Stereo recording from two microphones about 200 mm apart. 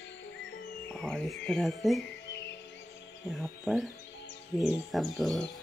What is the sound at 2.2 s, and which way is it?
Music, 60° left (ahead or behind).